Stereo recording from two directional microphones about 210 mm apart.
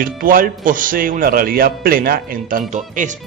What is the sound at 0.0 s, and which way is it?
A man's voice, 40° right (ahead or behind).